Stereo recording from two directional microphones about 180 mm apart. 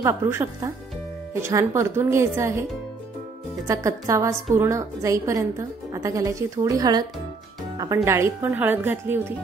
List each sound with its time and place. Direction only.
0.0 s a woman's voice: 15° right (ahead or behind)
3.6 s a woman's voice: 15° right (ahead or behind)